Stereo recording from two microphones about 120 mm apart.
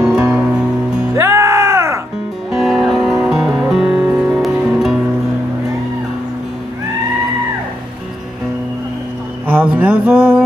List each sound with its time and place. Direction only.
0.0 s music: 5° right (ahead or behind)
1.1 s music: 20° right (ahead or behind)
2.5 s music: 5° right (ahead or behind)
9.5 s music: 15° right (ahead or behind)